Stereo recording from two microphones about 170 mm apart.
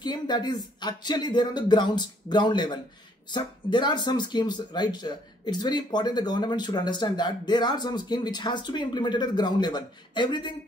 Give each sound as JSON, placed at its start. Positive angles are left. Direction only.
{"t": 0.0, "sound": "speech", "side_deg": 25}